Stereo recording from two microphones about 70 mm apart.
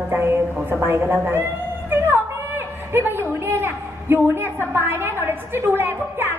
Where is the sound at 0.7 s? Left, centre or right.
Right.